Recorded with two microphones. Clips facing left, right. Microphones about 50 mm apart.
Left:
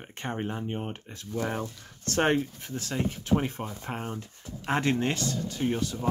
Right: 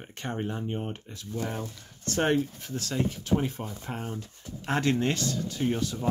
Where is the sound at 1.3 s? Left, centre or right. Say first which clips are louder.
Left 2 dB; left.